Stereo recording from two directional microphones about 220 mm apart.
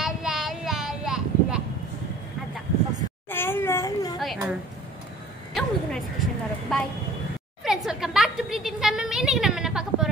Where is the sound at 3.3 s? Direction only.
10° left (ahead or behind).